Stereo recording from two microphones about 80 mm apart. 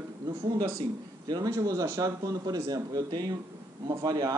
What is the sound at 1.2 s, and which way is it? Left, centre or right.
Speech, right.